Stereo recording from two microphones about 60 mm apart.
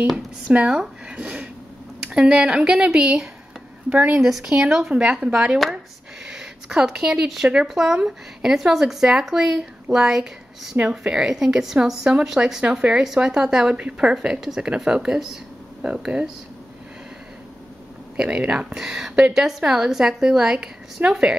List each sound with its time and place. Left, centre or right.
0.7 s a sound: centre
2.0 s speech: centre
15.8 s speech: centre
18.1 s speech: centre